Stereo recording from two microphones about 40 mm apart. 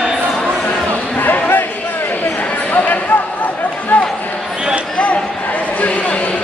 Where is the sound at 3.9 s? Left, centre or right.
Left.